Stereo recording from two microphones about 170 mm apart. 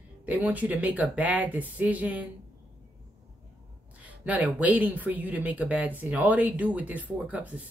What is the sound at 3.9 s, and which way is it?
Speech, 10° right (ahead or behind).